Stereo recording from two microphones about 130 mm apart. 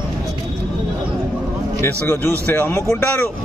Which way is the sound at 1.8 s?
20° left (ahead or behind).